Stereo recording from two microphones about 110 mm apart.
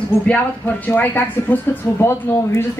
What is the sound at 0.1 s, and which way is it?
Speech, 25° left (ahead or behind).